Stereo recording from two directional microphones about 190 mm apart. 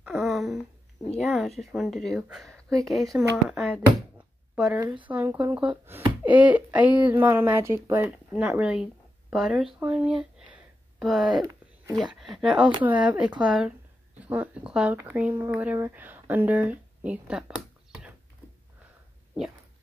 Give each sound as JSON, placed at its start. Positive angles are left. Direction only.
{"t": 0.0, "sound": "a sound", "side_deg": 0}
{"t": 1.2, "sound": "a woman's voice", "side_deg": 0}
{"t": 4.7, "sound": "speech", "side_deg": -20}
{"t": 5.0, "sound": "a woman's voice", "side_deg": -10}
{"t": 11.2, "sound": "speech", "side_deg": -20}
{"t": 12.1, "sound": "a woman's voice", "side_deg": 0}
{"t": 14.2, "sound": "a sound", "side_deg": -10}
{"t": 15.0, "sound": "speech", "side_deg": -10}